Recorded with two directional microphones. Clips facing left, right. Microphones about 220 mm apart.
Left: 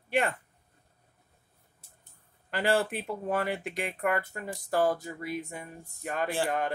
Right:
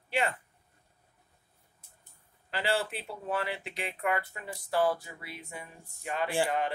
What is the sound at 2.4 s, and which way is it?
Speech, 50° left (ahead or behind).